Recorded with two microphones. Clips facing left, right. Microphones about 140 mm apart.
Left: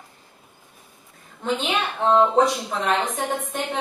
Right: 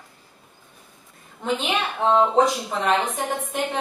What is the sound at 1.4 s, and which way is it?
A woman's voice, centre (ahead or behind).